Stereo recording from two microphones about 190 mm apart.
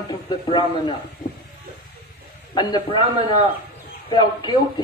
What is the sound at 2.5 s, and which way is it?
Speech, 25° left (ahead or behind).